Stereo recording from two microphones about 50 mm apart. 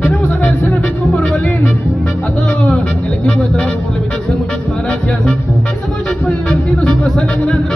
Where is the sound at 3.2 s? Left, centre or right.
Left.